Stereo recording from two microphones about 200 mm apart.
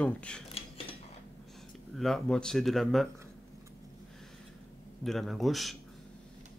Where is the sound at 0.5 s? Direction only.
30° left (ahead or behind).